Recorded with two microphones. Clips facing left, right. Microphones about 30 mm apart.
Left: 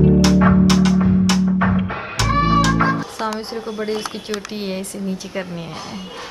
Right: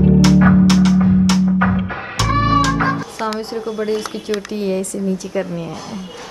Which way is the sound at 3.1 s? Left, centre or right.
Right.